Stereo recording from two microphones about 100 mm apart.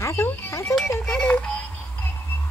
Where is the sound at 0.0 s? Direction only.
20° left (ahead or behind).